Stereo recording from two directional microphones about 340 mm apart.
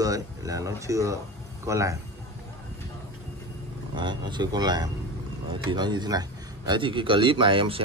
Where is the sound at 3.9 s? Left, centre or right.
Centre.